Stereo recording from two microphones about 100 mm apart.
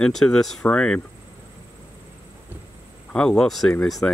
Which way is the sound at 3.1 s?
10° left (ahead or behind).